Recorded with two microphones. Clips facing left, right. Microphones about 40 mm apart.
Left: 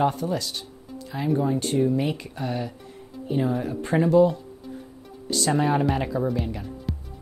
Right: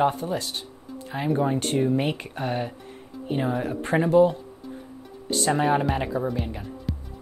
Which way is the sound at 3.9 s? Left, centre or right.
Right.